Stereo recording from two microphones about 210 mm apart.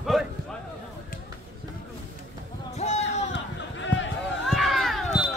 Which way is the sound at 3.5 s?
60° left (ahead or behind).